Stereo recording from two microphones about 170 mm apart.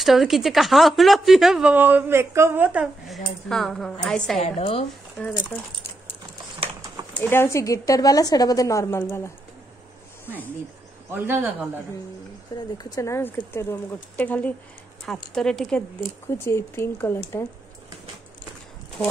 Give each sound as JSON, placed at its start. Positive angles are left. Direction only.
{"t": 0.0, "sound": "speech", "side_deg": 0}
{"t": 4.4, "sound": "a woman's voice", "side_deg": 35}
{"t": 5.2, "sound": "speech", "side_deg": 10}
{"t": 7.2, "sound": "a woman's voice", "side_deg": 15}
{"t": 11.1, "sound": "speech", "side_deg": -15}
{"t": 12.7, "sound": "speech", "side_deg": 20}
{"t": 16.4, "sound": "speech", "side_deg": 15}